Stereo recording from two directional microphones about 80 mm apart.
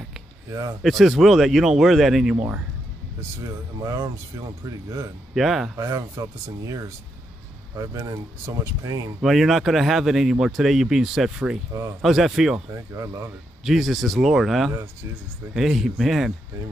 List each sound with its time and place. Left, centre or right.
0.5 s speech: right
0.8 s speech: centre
3.8 s speech: right
5.3 s speech: centre
5.8 s speech: right
8.0 s speech: right
9.2 s speech: centre
12.9 s speech: right
13.7 s speech: centre